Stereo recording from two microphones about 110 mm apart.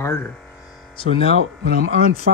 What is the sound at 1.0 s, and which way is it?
Speech, 60° left (ahead or behind).